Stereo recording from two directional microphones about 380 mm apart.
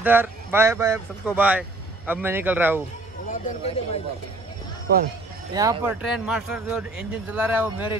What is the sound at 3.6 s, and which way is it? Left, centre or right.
Speech, centre.